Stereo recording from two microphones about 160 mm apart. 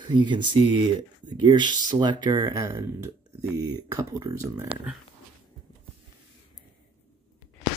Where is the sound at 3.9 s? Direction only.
20° right (ahead or behind).